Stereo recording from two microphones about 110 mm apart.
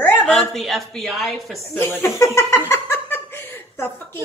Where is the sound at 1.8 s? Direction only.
20° left (ahead or behind).